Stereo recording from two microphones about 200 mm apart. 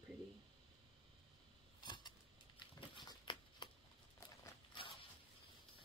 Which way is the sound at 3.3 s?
25° left (ahead or behind).